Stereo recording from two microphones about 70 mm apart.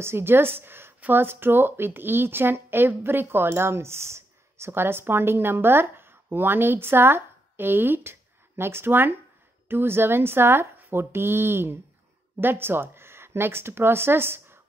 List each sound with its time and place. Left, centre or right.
0.0 s speech: right